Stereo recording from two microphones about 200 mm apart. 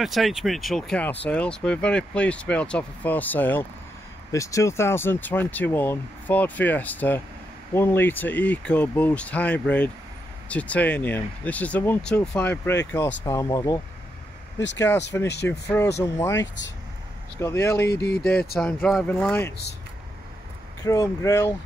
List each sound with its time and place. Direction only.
0.0 s speech: centre (ahead or behind); by 13.7 s 20° left (ahead or behind)
15.4 s speech: 15° left (ahead or behind)
17.8 s speech: 55° left (ahead or behind)
18.2 s speech: 5° left (ahead or behind)
20.8 s speech: 15° left (ahead or behind)